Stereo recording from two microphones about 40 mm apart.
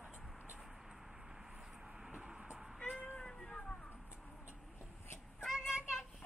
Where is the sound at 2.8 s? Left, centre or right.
Left.